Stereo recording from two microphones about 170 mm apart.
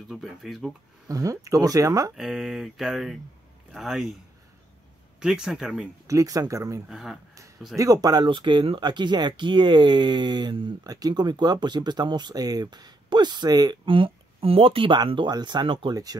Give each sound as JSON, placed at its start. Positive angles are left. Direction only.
{"t": 0.1, "sound": "speech", "side_deg": 0}
{"t": 1.0, "sound": "speech", "side_deg": -20}
{"t": 2.1, "sound": "speech", "side_deg": 0}
{"t": 5.2, "sound": "speech", "side_deg": -5}
{"t": 6.0, "sound": "speech", "side_deg": -20}
{"t": 6.9, "sound": "speech", "side_deg": 0}
{"t": 7.7, "sound": "speech", "side_deg": -20}